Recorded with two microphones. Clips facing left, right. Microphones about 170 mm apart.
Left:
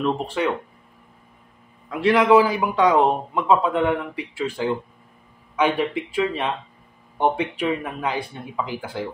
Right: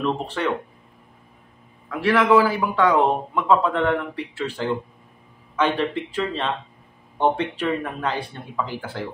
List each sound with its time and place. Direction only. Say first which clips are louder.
0.0 s a man's voice: left 2 dB; 10° left (ahead or behind)
1.9 s a man's voice: left 2 dB; 15° left (ahead or behind)